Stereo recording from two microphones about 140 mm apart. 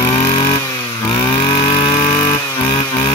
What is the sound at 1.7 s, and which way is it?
Vehicle, 30° left (ahead or behind).